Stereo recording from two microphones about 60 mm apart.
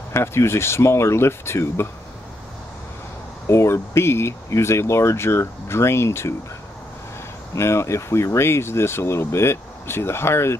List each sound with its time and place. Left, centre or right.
0.1 s speech: left
3.4 s speech: left
7.5 s speech: left